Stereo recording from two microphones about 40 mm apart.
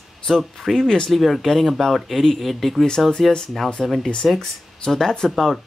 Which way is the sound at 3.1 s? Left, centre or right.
Centre.